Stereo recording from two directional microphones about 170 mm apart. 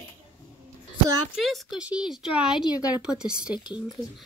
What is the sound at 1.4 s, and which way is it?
A woman's voice, centre (ahead or behind).